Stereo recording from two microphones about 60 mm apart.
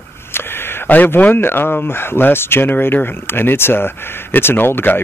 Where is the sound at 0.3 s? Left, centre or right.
Left.